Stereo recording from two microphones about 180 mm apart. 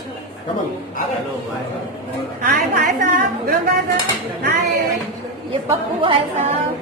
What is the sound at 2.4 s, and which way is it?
A woman's voice, 50° right (ahead or behind).